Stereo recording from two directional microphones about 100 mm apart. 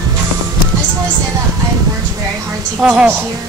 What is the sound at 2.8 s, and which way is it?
Speech, 10° right (ahead or behind).